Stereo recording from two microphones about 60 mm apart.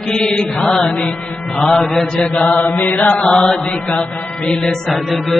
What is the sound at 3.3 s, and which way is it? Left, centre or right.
Mantra, centre.